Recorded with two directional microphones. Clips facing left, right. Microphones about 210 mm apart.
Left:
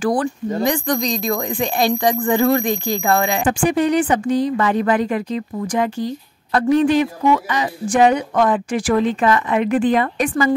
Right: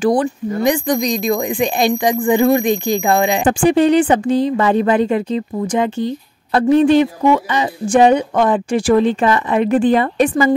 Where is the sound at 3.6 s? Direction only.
30° right (ahead or behind).